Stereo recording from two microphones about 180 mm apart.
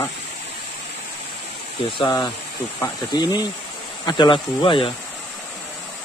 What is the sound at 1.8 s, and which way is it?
Speech, 25° left (ahead or behind).